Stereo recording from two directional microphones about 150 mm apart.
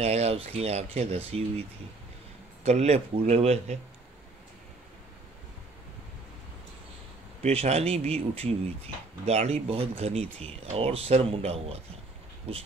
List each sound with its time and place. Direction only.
0.0 s speech: 45° right (ahead or behind)
2.6 s speech: 45° right (ahead or behind)
7.4 s speech: 45° right (ahead or behind)